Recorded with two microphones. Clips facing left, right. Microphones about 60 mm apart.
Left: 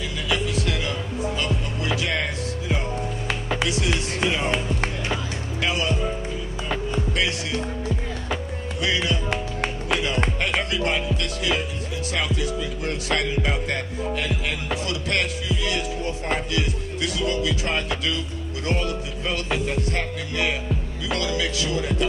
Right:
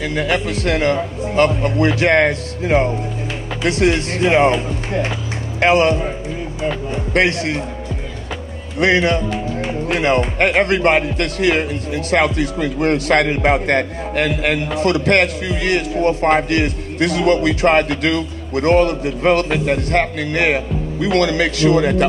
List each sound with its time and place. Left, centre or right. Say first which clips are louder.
0.0 s music: right 7 dB; right
7.2 s music: right 13 dB; right
8.7 s music: right 10 dB; right
9.3 s speech: right 5 dB; left
9.9 s music: right 11 dB; right